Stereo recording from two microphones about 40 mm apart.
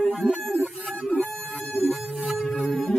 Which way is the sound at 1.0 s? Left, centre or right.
Left.